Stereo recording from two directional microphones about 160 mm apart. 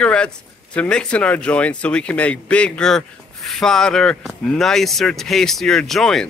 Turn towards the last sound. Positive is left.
turn(degrees=0)  # may be behind; listen again after turning